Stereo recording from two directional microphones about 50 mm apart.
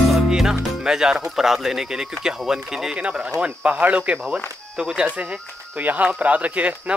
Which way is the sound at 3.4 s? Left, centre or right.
Right.